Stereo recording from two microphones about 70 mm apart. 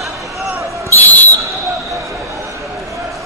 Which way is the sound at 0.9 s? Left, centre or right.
Left.